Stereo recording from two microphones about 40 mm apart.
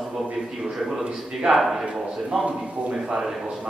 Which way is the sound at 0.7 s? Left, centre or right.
Centre.